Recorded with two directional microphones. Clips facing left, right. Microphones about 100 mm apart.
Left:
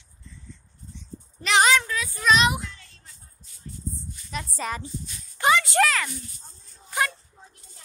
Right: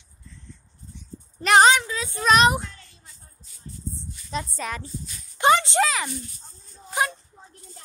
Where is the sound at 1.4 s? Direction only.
45° right (ahead or behind).